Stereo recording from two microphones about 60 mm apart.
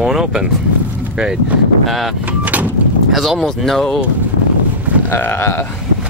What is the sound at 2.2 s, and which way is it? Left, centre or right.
Vehicle, right.